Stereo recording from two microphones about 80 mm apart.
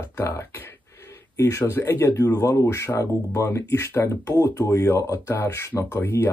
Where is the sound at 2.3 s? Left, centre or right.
Left.